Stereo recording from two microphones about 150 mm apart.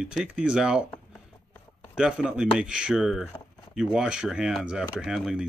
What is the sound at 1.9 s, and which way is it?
Speech, 5° right (ahead or behind).